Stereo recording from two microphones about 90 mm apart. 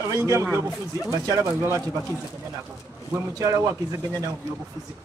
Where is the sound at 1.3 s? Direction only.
25° right (ahead or behind).